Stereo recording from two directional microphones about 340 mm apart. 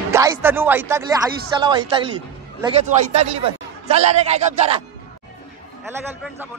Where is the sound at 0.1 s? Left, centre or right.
Centre.